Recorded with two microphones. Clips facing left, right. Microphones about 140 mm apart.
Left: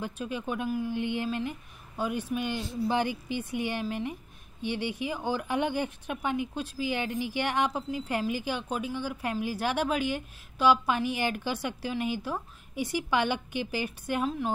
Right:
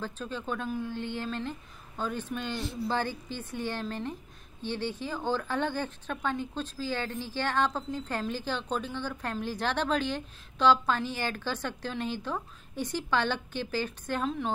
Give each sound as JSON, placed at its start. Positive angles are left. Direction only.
{"t": 0.0, "sound": "a woman's voice", "side_deg": 15}